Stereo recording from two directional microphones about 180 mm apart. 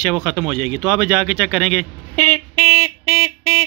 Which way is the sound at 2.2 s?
40° left (ahead or behind).